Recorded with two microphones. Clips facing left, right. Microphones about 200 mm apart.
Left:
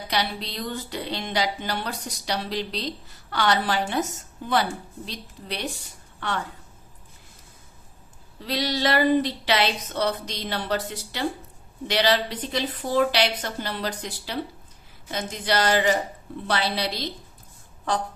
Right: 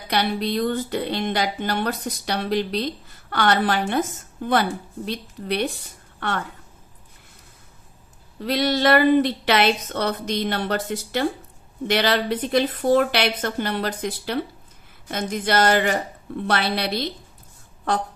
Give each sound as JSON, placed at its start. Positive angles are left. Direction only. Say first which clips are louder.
{"t": 0.1, "sound": "a woman's voice", "louder": "right 7 dB", "side_deg": -55}
{"t": 6.1, "sound": "a sound", "louder": "right 2 dB", "side_deg": -55}
{"t": 8.4, "sound": "a woman's voice", "louder": "right 5 dB", "side_deg": -55}
{"t": 11.9, "sound": "a woman's voice", "louder": "right 2 dB", "side_deg": -55}